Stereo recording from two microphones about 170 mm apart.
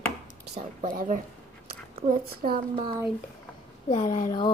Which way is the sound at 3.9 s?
45° left (ahead or behind).